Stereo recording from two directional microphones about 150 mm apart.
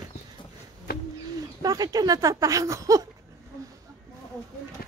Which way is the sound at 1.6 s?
25° right (ahead or behind).